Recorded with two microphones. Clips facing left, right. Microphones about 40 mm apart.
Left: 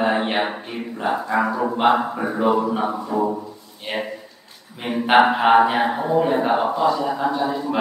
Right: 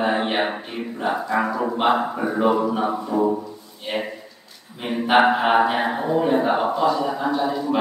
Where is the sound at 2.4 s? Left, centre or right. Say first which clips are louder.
Left 1 dB; centre.